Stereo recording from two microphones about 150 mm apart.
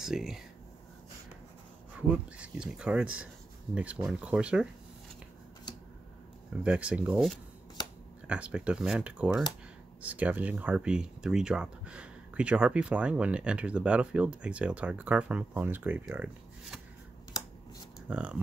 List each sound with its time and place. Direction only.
0.0 s speech: centre (ahead or behind)
2.0 s speech: 10° right (ahead or behind)
6.6 s speech: 5° right (ahead or behind)
18.1 s speech: 10° right (ahead or behind)